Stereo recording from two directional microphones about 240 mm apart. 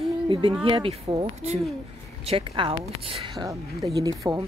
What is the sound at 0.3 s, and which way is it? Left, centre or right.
A woman's voice, right.